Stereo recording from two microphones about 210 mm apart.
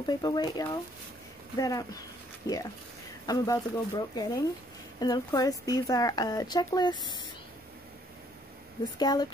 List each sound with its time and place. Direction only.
0.0 s speech: 20° left (ahead or behind)
8.9 s speech: 20° left (ahead or behind)